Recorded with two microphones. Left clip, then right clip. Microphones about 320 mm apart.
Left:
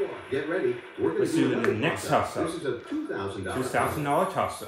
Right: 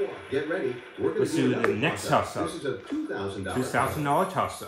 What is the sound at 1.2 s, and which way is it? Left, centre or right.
Speech, right.